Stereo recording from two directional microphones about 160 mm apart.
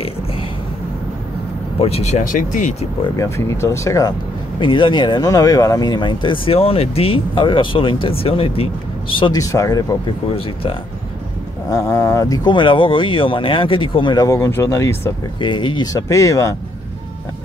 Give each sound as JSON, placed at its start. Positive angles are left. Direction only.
{"t": 1.8, "sound": "speech", "side_deg": 40}
{"t": 3.2, "sound": "speech", "side_deg": 20}
{"t": 4.6, "sound": "speech", "side_deg": 30}
{"t": 11.7, "sound": "speech", "side_deg": 20}
{"t": 15.4, "sound": "speech", "side_deg": 30}